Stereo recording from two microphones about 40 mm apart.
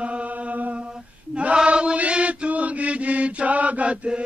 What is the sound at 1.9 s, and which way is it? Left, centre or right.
Chant, right.